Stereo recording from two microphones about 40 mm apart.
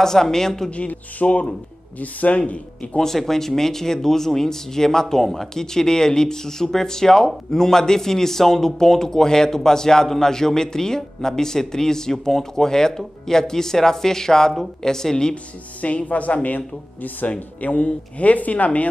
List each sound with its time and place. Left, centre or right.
0.0 s a man's voice: centre
0.7 s speech: left
3.0 s a man's voice: centre
15.8 s speech: left